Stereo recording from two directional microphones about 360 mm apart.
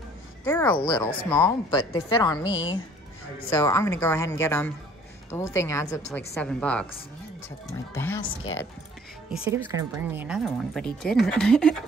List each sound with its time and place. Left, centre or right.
0.5 s a woman's voice: centre
2.5 s speech: left
3.4 s a woman's voice: centre
9.5 s speech: centre